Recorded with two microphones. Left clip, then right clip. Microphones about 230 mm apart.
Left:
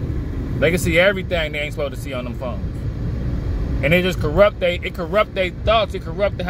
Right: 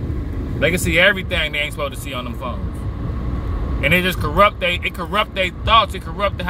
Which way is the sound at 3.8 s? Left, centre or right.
Right.